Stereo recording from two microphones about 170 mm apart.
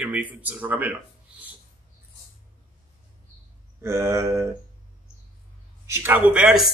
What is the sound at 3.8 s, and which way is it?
Speech, 15° right (ahead or behind).